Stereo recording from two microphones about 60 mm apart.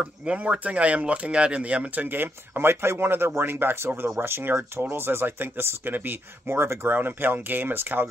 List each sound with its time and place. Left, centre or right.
0.0 s speech: centre
2.0 s speech: right